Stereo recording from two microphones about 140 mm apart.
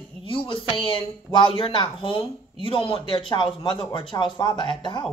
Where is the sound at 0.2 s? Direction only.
35° left (ahead or behind).